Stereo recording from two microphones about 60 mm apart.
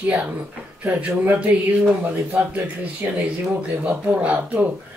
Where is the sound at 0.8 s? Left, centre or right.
Right.